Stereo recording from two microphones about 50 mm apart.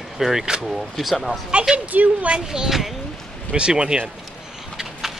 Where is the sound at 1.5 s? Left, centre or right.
Right.